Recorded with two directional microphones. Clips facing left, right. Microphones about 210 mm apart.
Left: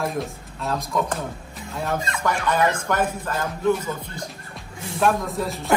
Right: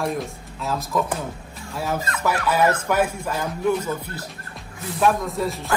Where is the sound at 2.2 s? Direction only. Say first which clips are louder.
Right 2 dB; 5° right (ahead or behind).